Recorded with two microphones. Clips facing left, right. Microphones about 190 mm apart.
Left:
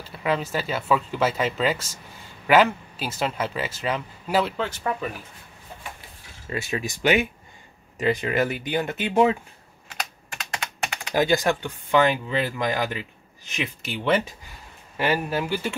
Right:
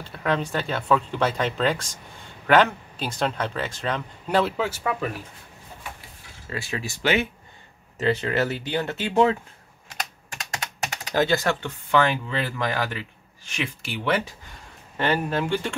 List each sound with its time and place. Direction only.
0.2 s speech: 5° left (ahead or behind)
6.5 s speech: 20° left (ahead or behind)
11.1 s speech: 15° left (ahead or behind)
14.5 s speech: 5° left (ahead or behind)